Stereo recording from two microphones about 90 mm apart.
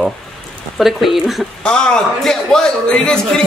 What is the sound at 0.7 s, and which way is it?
Speech, centre (ahead or behind).